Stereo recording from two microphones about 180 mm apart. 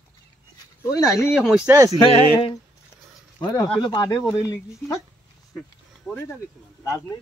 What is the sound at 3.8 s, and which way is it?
Speech, 25° left (ahead or behind).